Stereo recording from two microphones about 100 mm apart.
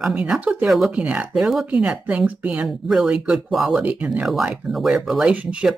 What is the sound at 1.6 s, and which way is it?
A woman's voice, 10° right (ahead or behind).